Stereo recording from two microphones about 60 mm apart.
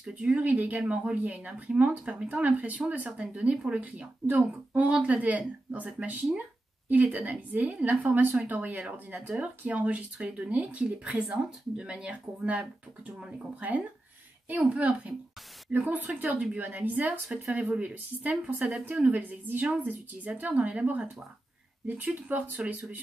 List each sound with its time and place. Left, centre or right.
0.1 s speech: centre
2.4 s speech: right